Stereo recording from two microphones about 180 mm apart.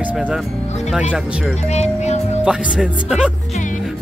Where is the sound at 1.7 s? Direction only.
40° left (ahead or behind).